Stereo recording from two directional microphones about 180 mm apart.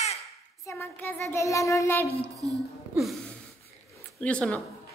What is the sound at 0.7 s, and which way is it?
Child singing, 15° left (ahead or behind).